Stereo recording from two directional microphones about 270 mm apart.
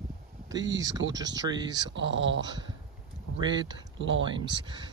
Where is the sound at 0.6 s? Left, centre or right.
Right.